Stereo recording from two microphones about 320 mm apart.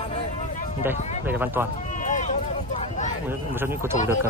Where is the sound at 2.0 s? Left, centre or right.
Left.